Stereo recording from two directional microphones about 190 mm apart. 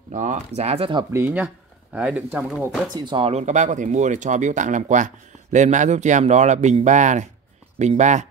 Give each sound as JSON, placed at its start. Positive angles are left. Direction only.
{"t": 0.1, "sound": "speech", "side_deg": -40}
{"t": 1.1, "sound": "speech", "side_deg": -10}
{"t": 2.9, "sound": "speech", "side_deg": -25}